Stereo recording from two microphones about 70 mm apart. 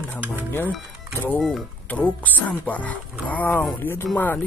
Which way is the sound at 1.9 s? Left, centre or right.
Left.